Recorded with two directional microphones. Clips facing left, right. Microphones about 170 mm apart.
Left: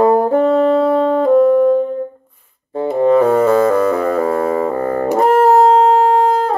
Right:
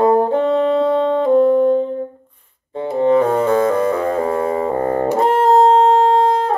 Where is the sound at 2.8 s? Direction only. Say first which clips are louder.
Left 2 dB; 45° left (ahead or behind).